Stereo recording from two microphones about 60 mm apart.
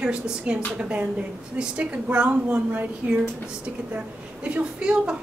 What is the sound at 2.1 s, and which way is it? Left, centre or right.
Speech, right.